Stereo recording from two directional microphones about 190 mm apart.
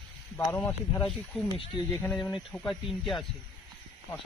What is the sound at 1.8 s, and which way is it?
Speech, 10° left (ahead or behind).